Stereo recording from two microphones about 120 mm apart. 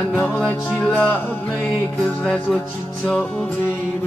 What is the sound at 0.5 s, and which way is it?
Music, 10° left (ahead or behind).